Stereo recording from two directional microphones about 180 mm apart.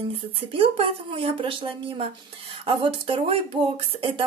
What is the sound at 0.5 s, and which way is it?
A woman's voice, 30° right (ahead or behind).